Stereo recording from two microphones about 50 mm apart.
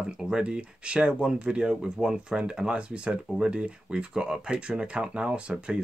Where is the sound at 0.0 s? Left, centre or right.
Centre.